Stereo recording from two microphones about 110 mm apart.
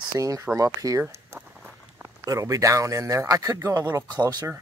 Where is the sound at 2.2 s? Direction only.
30° right (ahead or behind).